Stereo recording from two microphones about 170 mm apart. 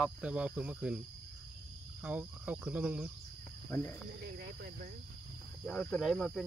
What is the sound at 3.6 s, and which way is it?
Speech, 15° left (ahead or behind).